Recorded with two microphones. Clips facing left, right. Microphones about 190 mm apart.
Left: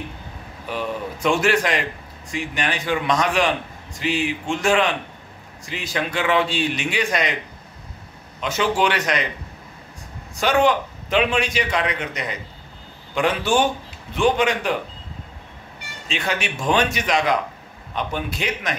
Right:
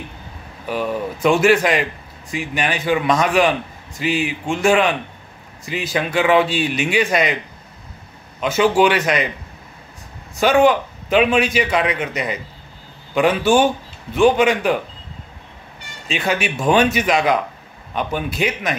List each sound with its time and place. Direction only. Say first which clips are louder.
0.7 s a man's voice: right 5 dB; 5° right (ahead or behind)
8.4 s a man's voice: right 6 dB; 5° right (ahead or behind)
10.4 s a man's voice: right 4 dB; 10° right (ahead or behind)
16.1 s a man's voice: right 5 dB; 5° right (ahead or behind)